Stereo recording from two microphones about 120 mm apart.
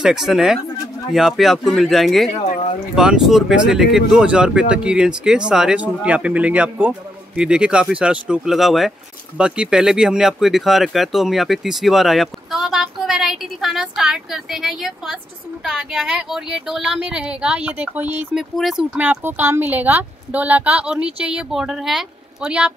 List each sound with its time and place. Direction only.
0.0 s speech: 5° right (ahead or behind)
18.3 s speech: 5° right (ahead or behind)